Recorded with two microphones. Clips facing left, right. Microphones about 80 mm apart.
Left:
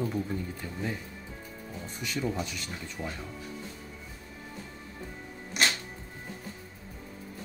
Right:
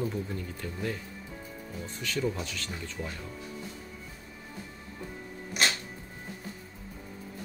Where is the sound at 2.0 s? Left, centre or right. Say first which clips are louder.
Even; centre.